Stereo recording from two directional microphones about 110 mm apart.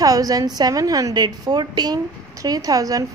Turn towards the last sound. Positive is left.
turn(degrees=-30)  # may be behind; listen again after turning